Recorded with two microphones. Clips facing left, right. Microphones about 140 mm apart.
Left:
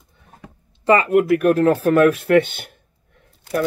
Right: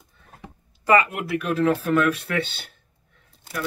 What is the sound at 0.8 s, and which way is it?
Speech, 30° left (ahead or behind).